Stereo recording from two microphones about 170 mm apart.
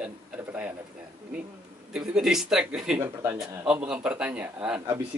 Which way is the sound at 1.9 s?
5° right (ahead or behind).